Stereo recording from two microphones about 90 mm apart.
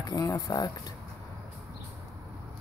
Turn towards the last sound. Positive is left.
turn(degrees=45)  # may be behind; listen again after turning